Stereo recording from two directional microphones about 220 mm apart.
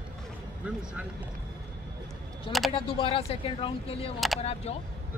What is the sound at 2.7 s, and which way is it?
Speech, 25° left (ahead or behind).